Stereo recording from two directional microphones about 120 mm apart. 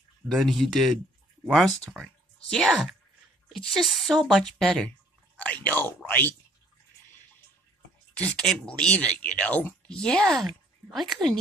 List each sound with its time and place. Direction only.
0.3 s speech: centre (ahead or behind)
8.2 s speech: 10° left (ahead or behind)